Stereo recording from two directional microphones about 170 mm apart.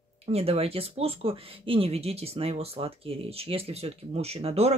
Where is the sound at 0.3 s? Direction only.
35° right (ahead or behind).